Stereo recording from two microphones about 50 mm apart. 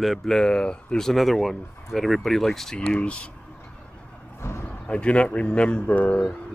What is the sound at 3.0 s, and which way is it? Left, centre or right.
Speech, left.